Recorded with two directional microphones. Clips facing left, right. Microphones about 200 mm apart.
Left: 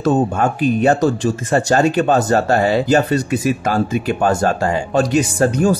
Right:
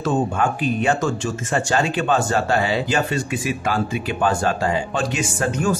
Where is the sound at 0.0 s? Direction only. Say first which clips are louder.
Left 5 dB; 40° left (ahead or behind).